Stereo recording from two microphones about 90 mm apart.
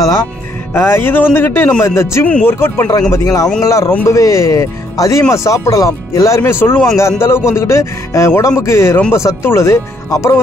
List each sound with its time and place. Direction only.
0.7 s speech: 30° left (ahead or behind)